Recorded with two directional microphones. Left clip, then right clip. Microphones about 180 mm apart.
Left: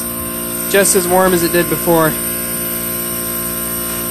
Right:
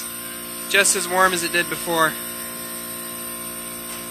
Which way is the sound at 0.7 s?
25° left (ahead or behind).